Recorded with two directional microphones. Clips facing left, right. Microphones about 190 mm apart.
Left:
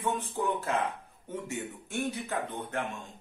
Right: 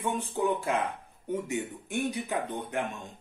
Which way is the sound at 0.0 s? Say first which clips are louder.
Right 2 dB; 15° right (ahead or behind).